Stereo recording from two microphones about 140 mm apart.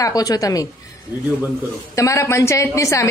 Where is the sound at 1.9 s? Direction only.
20° left (ahead or behind).